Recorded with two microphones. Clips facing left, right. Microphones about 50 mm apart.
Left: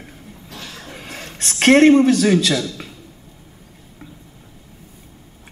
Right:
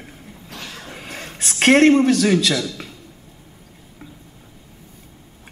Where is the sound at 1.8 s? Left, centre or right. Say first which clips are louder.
Left 2 dB; centre.